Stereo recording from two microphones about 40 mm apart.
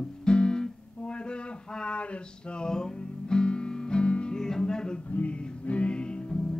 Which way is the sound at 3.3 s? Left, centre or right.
Left.